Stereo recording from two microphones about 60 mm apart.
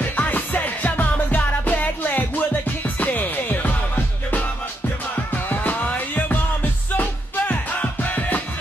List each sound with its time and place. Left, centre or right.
0.1 s music: left